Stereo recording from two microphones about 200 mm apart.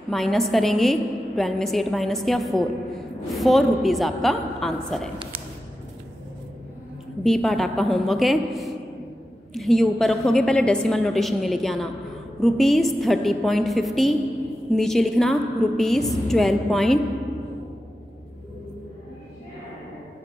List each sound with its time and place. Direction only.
0.1 s a woman's voice: centre (ahead or behind)
7.2 s a woman's voice: centre (ahead or behind)